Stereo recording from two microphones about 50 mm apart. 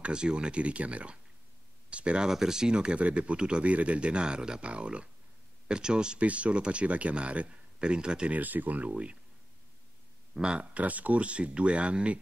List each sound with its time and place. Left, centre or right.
0.0 s speech: centre
2.3 s speech: centre
8.3 s speech: right
10.3 s speech: right